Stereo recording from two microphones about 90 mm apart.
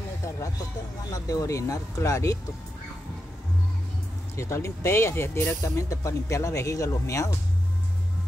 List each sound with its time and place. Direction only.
1.1 s speech: 40° left (ahead or behind)
4.4 s speech: 35° left (ahead or behind)